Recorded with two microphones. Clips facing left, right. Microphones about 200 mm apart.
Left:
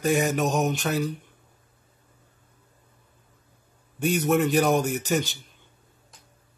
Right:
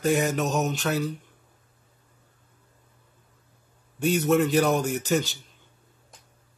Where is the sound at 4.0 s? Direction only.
15° left (ahead or behind).